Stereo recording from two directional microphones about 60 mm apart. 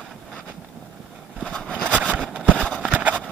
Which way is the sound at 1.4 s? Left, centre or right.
Centre.